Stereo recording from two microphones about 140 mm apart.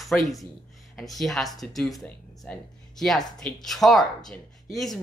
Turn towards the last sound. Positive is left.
turn(degrees=0)  # may be behind; listen again after turning